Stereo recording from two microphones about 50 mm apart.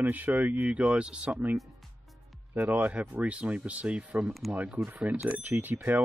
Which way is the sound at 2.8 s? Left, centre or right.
Right.